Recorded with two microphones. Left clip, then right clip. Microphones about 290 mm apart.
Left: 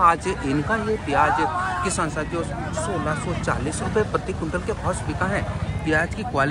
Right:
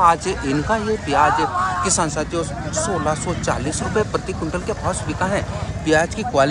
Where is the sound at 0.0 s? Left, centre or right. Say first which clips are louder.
Right 3 dB; centre.